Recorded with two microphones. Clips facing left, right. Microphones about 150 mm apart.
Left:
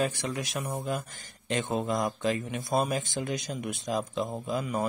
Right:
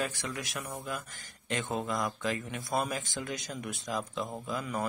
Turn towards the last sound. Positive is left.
turn(degrees=25)  # may be behind; listen again after turning